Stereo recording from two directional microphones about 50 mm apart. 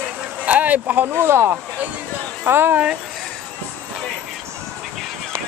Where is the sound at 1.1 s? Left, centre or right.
Right.